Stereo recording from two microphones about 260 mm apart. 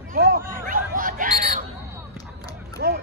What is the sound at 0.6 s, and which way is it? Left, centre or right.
Snicker, right.